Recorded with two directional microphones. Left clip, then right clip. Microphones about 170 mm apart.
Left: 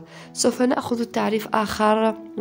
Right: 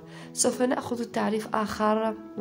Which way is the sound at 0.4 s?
35° left (ahead or behind).